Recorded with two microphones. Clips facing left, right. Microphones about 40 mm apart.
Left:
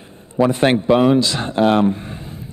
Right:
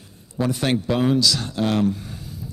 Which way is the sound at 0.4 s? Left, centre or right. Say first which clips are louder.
Left 7 dB; left.